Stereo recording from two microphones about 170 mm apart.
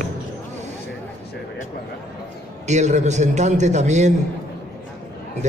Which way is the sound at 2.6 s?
45° right (ahead or behind).